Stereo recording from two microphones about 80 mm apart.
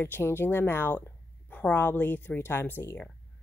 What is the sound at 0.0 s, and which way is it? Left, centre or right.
Speech, left.